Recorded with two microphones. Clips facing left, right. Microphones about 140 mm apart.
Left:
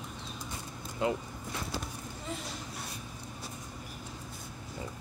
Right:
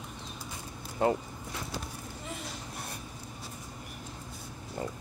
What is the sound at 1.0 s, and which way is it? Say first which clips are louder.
Speech: right 4 dB; 50° right (ahead or behind).